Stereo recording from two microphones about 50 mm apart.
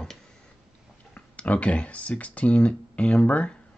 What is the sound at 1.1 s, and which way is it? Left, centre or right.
Speech, left.